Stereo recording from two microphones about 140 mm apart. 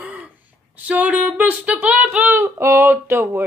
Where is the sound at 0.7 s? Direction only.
10° right (ahead or behind).